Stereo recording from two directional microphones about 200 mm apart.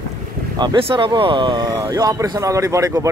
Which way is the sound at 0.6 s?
25° right (ahead or behind).